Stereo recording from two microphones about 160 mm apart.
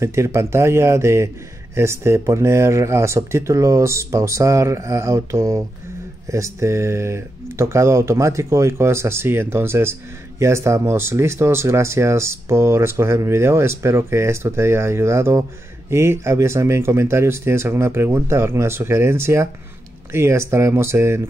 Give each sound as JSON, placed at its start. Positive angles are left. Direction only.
{"t": 0.0, "sound": "speech", "side_deg": -15}